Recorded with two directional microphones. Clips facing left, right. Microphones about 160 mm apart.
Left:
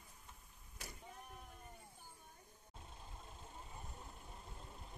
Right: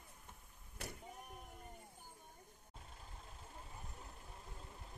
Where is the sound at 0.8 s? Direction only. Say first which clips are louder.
Right 5 dB; 60° right (ahead or behind).